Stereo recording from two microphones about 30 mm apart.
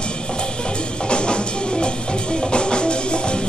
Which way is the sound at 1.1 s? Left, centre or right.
Left.